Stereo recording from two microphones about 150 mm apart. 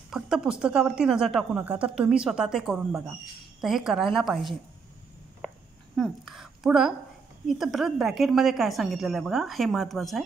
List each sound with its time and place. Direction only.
0.1 s a woman's voice: 5° right (ahead or behind)
5.9 s a sound: centre (ahead or behind)
7.4 s a woman's voice: centre (ahead or behind)